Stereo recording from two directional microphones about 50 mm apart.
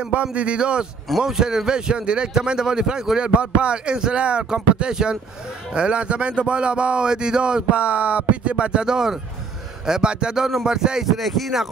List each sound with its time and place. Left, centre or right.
0.1 s a man's voice: right
11.1 s speech: centre